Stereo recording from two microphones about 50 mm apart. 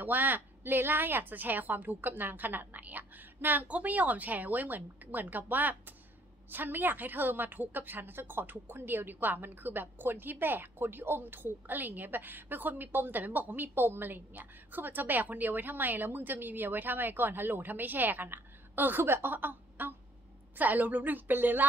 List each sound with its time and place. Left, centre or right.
0.0 s a woman's voice: right
3.6 s a woman's voice: right